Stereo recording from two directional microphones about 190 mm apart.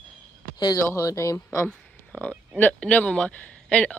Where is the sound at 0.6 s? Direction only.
20° left (ahead or behind).